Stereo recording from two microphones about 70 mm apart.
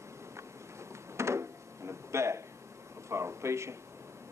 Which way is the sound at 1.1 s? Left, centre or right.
Right.